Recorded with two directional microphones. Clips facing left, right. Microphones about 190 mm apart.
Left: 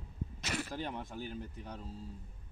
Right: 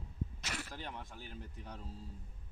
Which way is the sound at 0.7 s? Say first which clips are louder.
Left 7 dB; 35° left (ahead or behind).